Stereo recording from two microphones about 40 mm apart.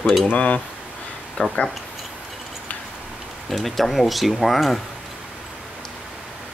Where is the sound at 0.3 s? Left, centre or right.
Left.